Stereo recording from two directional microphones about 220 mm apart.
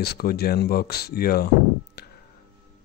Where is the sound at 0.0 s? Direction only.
45° left (ahead or behind).